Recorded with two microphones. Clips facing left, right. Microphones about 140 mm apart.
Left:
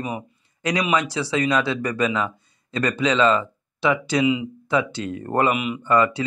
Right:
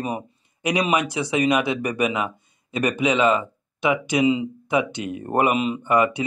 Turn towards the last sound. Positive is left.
turn(degrees=-15)  # may be behind; listen again after turning